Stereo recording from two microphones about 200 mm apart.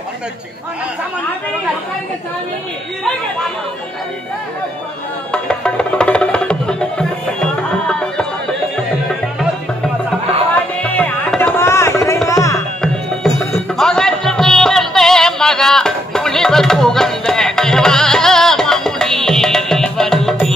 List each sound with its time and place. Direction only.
5.3 s music: 5° left (ahead or behind)
10.8 s music: 5° left (ahead or behind)
12.3 s tabla: 15° left (ahead or behind)
13.7 s music: centre (ahead or behind)